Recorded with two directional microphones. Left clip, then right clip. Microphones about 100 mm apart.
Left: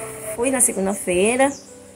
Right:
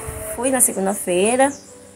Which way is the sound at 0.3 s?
30° right (ahead or behind).